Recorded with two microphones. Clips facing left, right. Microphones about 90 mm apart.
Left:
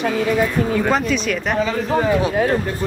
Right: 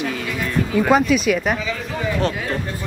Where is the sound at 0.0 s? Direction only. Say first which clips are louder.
Left 7 dB; 40° left (ahead or behind).